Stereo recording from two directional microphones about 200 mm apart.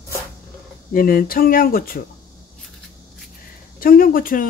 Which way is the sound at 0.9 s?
45° left (ahead or behind).